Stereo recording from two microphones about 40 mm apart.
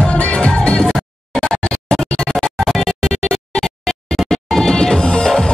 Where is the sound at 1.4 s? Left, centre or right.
Left.